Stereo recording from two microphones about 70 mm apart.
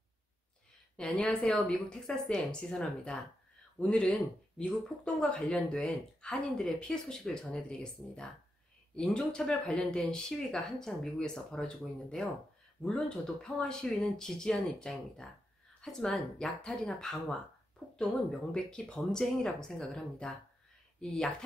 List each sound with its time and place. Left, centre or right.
0.9 s speech: centre
18.5 s speech: centre